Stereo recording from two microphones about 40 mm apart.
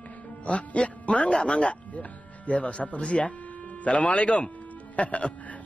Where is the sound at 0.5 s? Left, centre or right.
Left.